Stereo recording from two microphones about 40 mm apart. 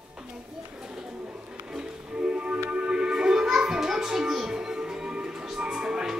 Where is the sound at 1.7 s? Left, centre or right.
Right.